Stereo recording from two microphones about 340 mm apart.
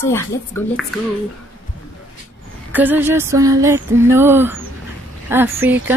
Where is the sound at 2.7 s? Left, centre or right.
Centre.